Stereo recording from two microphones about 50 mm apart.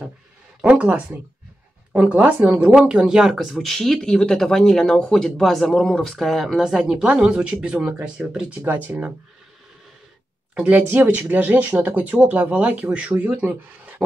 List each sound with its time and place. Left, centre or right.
0.6 s speech: right
2.8 s speech: centre
3.3 s speech: centre
3.5 s speech: centre
6.6 s speech: centre; by 8.9 s right
10.5 s speech: right